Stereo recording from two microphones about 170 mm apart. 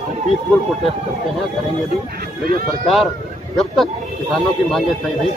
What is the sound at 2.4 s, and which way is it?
Speech, 60° right (ahead or behind).